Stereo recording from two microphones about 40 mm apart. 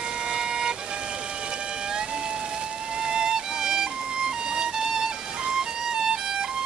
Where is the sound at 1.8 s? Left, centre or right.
Right.